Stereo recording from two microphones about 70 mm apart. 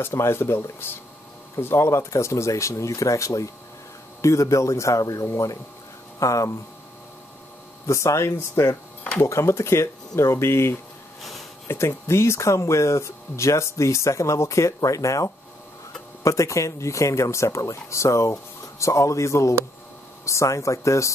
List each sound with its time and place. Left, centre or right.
0.0 s speech: left
7.8 s speech: left